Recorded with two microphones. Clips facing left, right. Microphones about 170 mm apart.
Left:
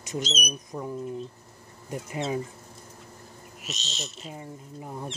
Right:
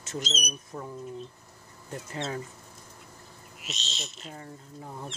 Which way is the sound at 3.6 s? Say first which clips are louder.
Left 2 dB; 40° left (ahead or behind).